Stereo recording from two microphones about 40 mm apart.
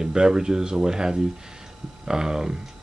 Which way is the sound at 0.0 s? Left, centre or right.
Centre.